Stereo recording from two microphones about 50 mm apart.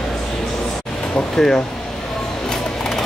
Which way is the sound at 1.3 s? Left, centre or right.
Centre.